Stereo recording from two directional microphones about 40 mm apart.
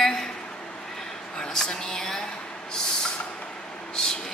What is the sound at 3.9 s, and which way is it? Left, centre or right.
Vehicle, centre.